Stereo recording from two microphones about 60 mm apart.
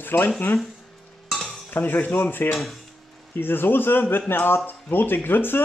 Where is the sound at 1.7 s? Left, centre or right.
Left.